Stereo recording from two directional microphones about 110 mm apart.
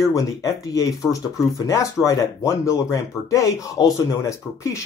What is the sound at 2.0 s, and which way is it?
A man's voice, 30° left (ahead or behind).